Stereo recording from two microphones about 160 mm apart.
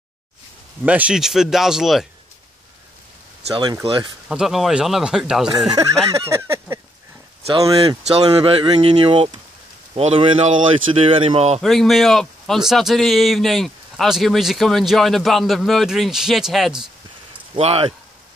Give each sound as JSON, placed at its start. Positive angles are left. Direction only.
{"t": 0.8, "sound": "speech", "side_deg": -10}
{"t": 3.5, "sound": "speech", "side_deg": -30}
{"t": 4.3, "sound": "speech", "side_deg": -5}
{"t": 5.8, "sound": "a sound", "side_deg": -20}
{"t": 7.6, "sound": "speech", "side_deg": -25}
{"t": 11.6, "sound": "speech", "side_deg": 0}
{"t": 17.6, "sound": "speech", "side_deg": -40}